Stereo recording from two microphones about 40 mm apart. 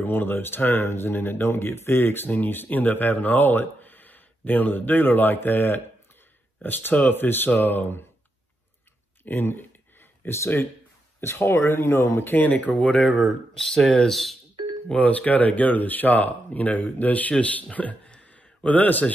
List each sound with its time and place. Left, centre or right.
0.0 s speech: left
2.3 s speech: left
9.2 s a sound: left
11.1 s speech: left
12.3 s speech: left
13.0 s speech: centre
15.0 s speech: left
18.1 s a sound: left